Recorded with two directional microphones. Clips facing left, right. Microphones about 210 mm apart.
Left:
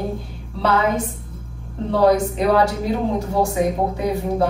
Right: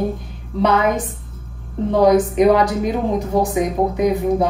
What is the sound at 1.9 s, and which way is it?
A woman's voice, 15° right (ahead or behind).